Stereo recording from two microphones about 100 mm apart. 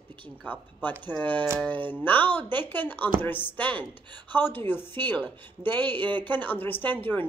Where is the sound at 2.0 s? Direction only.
20° left (ahead or behind).